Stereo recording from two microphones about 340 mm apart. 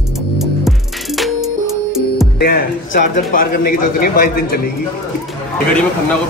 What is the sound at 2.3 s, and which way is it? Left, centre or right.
A man's voice, left.